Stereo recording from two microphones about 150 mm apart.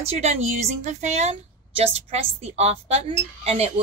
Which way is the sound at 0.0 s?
45° right (ahead or behind).